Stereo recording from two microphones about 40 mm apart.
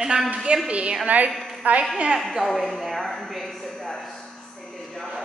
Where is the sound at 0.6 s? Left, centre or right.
Right.